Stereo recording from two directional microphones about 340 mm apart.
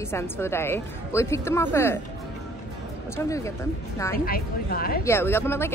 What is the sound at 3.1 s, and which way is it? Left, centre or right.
Speech, centre.